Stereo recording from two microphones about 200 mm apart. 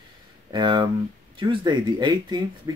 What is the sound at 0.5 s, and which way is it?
Speech, 20° right (ahead or behind).